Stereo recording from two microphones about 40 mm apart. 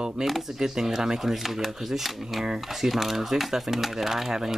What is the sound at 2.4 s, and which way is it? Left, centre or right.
Speech, centre.